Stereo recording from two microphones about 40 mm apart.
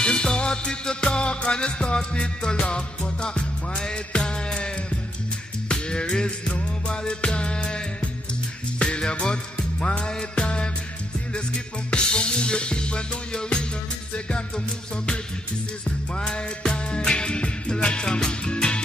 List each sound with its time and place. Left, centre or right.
0.0 s music: left
11.9 s music: left
16.2 s music: centre